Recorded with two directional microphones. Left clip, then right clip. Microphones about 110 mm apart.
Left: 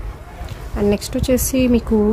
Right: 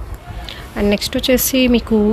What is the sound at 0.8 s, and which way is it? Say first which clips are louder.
Speech: right 2 dB; 10° right (ahead or behind).